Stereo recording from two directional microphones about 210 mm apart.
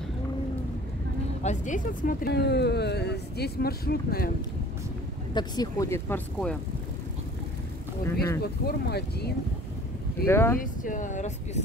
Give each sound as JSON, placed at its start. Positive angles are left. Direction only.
{"t": 1.4, "sound": "speech", "side_deg": 35}
{"t": 5.3, "sound": "speech", "side_deg": 20}
{"t": 8.4, "sound": "speech", "side_deg": 50}
{"t": 10.2, "sound": "speech", "side_deg": 10}
{"t": 10.6, "sound": "speech", "side_deg": 40}